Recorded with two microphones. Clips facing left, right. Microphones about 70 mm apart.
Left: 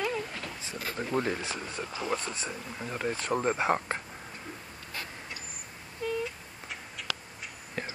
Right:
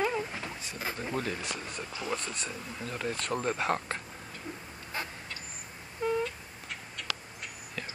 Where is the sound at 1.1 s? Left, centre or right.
Left.